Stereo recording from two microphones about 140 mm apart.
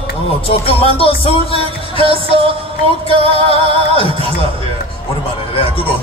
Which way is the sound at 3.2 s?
40° left (ahead or behind).